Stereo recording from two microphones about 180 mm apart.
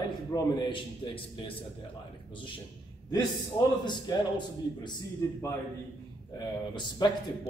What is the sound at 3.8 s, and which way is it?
Speech, 25° left (ahead or behind).